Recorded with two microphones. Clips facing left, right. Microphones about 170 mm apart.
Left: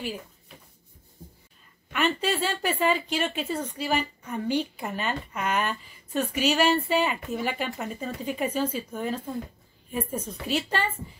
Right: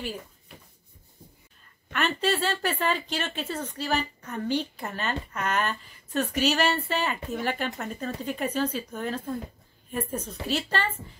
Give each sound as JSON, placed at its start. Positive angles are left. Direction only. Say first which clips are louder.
{"t": 1.9, "sound": "speech", "louder": "even", "side_deg": 10}